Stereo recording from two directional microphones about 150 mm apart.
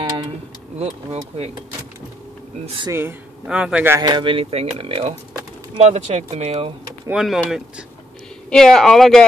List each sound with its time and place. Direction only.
0.7 s speech: 45° right (ahead or behind)
2.9 s speech: 15° right (ahead or behind)
4.0 s speech: 30° right (ahead or behind)
7.1 s speech: 5° right (ahead or behind)